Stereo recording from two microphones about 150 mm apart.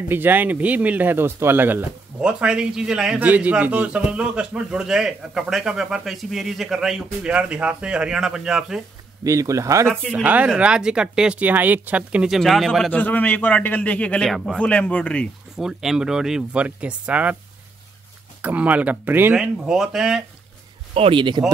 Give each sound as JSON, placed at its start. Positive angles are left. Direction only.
{"t": 0.1, "sound": "speech", "side_deg": -15}
{"t": 9.2, "sound": "speech", "side_deg": -20}
{"t": 10.1, "sound": "speech", "side_deg": -10}
{"t": 12.9, "sound": "a man's voice", "side_deg": 10}
{"t": 15.5, "sound": "speech", "side_deg": -5}
{"t": 18.4, "sound": "speech", "side_deg": -10}
{"t": 20.9, "sound": "speech", "side_deg": -35}